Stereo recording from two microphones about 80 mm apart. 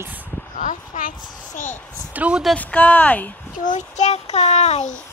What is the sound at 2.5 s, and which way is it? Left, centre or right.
Speech, centre.